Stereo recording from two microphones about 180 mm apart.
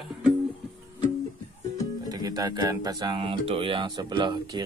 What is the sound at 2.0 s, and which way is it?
Speech, 20° right (ahead or behind).